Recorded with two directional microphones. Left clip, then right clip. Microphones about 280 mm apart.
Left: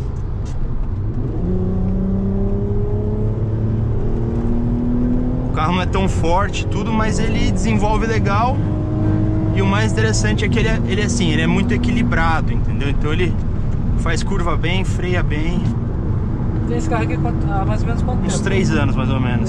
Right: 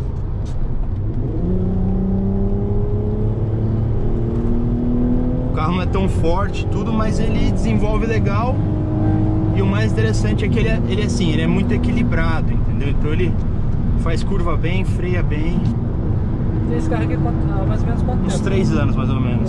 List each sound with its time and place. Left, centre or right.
5.6 s speech: left
9.6 s speech: left
14.3 s speech: left
18.4 s speech: left